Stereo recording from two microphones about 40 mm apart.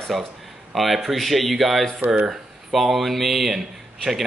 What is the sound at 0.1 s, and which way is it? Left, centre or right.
A man's voice, centre.